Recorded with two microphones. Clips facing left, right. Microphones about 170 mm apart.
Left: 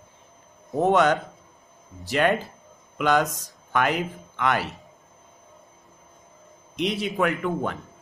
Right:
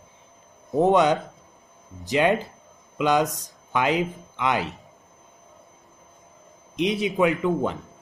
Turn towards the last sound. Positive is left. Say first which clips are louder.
# right 3 dB
turn(degrees=-20)  # may be behind; listen again after turning